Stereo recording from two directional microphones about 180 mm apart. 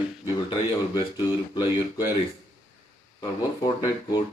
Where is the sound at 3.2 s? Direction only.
25° left (ahead or behind).